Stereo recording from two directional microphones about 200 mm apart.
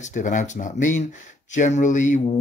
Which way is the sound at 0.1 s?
40° left (ahead or behind).